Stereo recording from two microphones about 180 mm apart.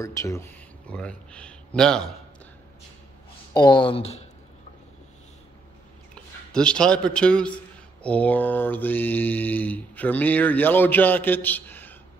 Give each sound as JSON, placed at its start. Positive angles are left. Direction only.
{"t": 0.0, "sound": "speech", "side_deg": 15}
{"t": 3.5, "sound": "speech", "side_deg": 25}
{"t": 6.1, "sound": "a man's voice", "side_deg": 5}